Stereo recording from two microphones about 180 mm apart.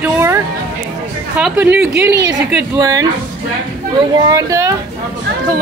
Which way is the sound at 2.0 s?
20° right (ahead or behind).